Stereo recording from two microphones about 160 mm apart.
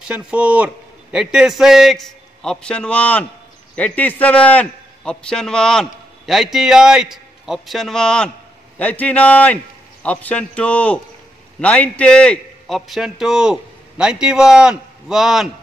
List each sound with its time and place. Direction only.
0.1 s a man's voice: 10° right (ahead or behind)